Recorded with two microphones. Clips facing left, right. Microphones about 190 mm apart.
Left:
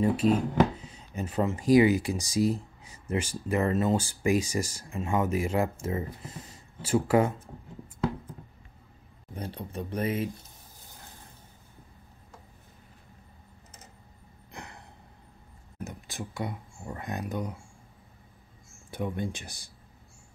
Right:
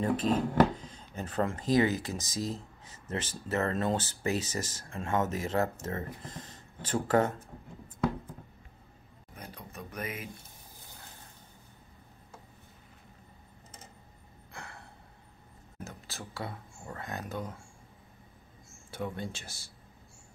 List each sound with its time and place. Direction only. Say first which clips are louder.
0.0 s speech: left 4 dB; 10° left (ahead or behind)
9.3 s speech: left 9 dB; 30° left (ahead or behind)
14.5 s a sound: left 2 dB; 20° left (ahead or behind)
15.8 s speech: left 5 dB; 15° left (ahead or behind)
18.9 s speech: left 4 dB; 15° left (ahead or behind)